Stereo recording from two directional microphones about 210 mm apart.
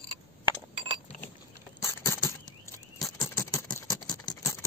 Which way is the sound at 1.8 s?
15° left (ahead or behind).